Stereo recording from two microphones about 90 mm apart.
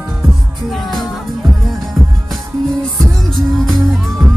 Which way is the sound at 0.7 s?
Centre (ahead or behind).